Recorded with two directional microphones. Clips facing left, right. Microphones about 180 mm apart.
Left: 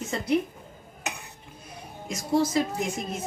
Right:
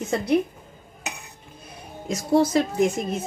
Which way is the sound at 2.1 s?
65° right (ahead or behind).